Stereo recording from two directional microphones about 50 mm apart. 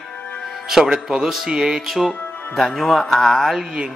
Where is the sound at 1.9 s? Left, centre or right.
Centre.